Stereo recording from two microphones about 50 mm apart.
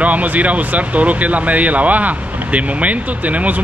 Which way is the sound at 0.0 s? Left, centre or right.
Right.